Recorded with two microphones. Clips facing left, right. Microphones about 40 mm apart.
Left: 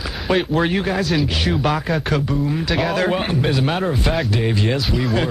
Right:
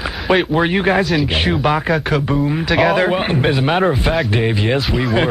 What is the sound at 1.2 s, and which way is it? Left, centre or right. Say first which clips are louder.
Speech: right 4 dB; right.